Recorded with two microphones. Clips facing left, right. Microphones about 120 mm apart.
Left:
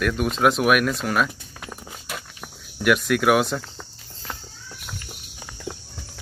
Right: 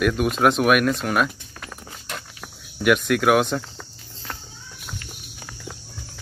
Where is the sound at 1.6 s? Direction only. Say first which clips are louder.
Left 1 dB; 10° left (ahead or behind).